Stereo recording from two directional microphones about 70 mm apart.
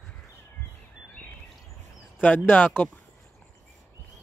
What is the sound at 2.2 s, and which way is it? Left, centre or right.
Speech, left.